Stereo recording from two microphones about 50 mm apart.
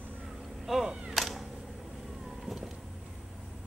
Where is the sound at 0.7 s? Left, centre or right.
Centre.